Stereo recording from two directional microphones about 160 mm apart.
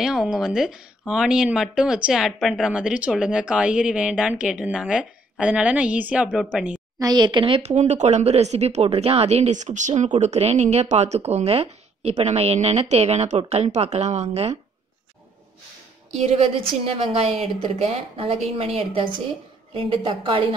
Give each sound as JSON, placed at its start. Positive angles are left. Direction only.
{"t": 0.0, "sound": "speech", "side_deg": -5}
{"t": 7.0, "sound": "speech", "side_deg": -25}
{"t": 16.3, "sound": "a woman's voice", "side_deg": -35}